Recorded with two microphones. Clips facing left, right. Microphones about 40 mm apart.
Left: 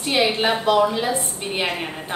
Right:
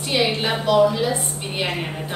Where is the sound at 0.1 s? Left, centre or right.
Centre.